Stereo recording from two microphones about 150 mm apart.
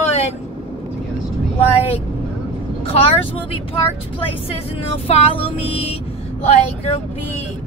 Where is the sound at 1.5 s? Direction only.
40° left (ahead or behind).